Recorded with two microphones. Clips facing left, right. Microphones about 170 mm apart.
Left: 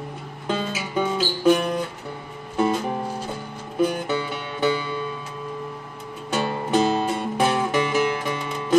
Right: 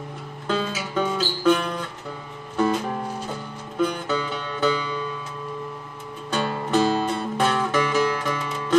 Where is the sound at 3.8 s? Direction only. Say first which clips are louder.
Left 2 dB; 10° left (ahead or behind).